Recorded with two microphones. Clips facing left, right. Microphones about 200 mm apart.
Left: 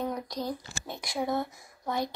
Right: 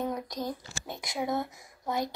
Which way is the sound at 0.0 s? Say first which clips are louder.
Even; 20° right (ahead or behind).